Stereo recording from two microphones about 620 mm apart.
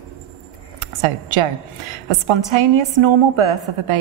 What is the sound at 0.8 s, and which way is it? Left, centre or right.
Speech, right.